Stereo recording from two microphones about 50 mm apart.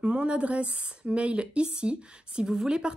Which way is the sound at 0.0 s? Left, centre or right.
Right.